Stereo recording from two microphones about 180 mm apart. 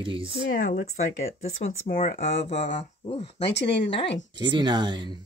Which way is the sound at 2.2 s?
35° left (ahead or behind).